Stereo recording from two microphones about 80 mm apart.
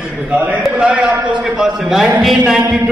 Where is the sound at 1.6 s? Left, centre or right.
Centre.